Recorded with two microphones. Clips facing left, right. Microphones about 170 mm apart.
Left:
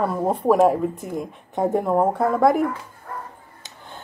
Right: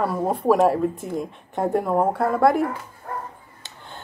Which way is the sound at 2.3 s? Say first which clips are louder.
Even; centre (ahead or behind).